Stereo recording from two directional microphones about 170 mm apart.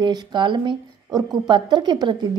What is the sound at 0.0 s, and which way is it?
A woman's voice, 25° right (ahead or behind).